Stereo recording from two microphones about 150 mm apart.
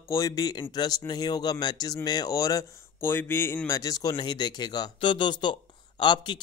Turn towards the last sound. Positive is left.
turn(degrees=30)  # may be behind; listen again after turning